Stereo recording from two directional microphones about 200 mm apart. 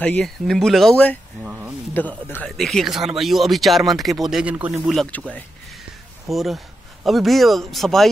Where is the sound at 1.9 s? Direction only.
10° left (ahead or behind).